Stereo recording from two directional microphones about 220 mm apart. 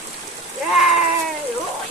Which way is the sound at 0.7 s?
Centre (ahead or behind).